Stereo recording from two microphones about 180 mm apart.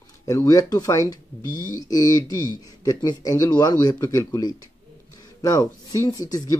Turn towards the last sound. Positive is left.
turn(degrees=20)  # may be behind; listen again after turning